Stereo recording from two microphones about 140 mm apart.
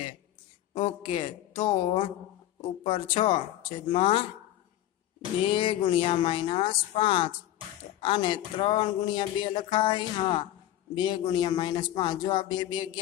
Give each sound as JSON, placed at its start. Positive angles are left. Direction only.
{"t": 0.7, "sound": "speech", "side_deg": 40}
{"t": 5.5, "sound": "speech", "side_deg": 40}